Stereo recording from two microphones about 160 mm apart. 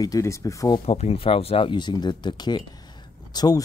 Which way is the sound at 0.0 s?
20° left (ahead or behind).